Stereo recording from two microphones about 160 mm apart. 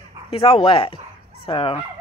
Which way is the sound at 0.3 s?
35° left (ahead or behind).